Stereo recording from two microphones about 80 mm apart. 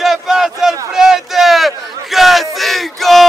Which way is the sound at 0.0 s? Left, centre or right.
Centre.